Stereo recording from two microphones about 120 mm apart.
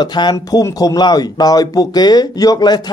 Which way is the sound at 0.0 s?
35° left (ahead or behind).